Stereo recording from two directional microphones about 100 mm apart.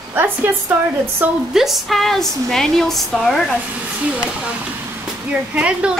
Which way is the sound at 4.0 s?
10° right (ahead or behind).